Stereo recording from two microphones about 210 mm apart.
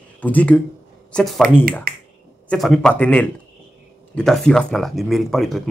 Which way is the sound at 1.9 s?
45° right (ahead or behind).